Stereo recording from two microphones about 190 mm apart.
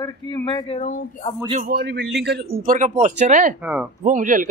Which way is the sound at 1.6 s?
55° right (ahead or behind).